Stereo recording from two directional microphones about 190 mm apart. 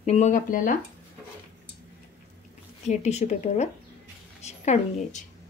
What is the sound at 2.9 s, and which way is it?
A woman's voice, 35° left (ahead or behind).